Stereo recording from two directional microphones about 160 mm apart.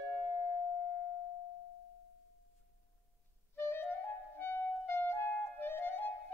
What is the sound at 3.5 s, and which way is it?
Clarinet, 15° left (ahead or behind).